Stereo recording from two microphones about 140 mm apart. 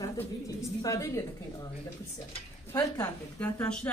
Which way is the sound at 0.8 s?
20° left (ahead or behind).